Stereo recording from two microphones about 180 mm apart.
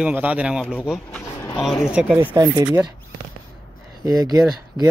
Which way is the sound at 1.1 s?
10° left (ahead or behind).